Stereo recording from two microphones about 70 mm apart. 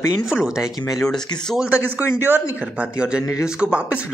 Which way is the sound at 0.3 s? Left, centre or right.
Centre.